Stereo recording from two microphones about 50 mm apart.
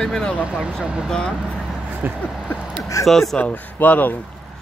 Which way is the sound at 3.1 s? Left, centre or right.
Centre.